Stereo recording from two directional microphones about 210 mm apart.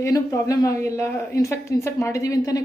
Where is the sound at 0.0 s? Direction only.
15° left (ahead or behind).